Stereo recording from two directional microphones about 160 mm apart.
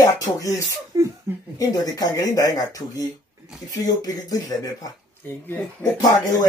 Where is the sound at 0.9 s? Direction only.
20° right (ahead or behind).